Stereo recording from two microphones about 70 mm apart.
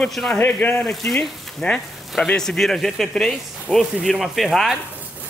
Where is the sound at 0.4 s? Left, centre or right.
Left.